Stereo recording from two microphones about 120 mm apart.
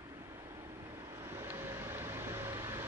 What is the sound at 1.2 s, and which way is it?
Vehicle, 20° right (ahead or behind).